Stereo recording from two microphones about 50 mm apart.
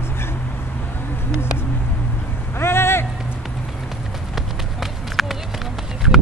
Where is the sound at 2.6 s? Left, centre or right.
Left.